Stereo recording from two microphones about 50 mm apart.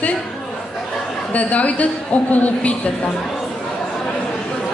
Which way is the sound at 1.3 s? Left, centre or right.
Left.